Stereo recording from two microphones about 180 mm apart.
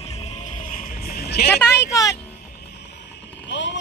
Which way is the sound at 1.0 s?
60° left (ahead or behind).